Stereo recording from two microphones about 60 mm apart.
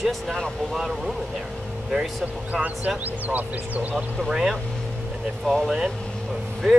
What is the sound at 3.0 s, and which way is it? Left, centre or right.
Speech, right.